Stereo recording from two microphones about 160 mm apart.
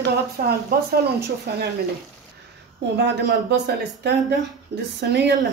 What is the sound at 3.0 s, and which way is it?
Speech, 90° right.